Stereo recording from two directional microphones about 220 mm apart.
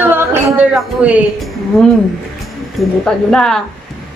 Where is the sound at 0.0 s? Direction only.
10° right (ahead or behind).